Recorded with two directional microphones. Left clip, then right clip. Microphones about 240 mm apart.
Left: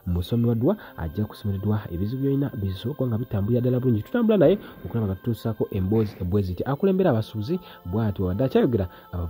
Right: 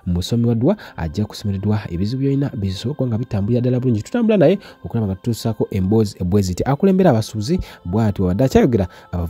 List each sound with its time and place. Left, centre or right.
0.1 s speech: right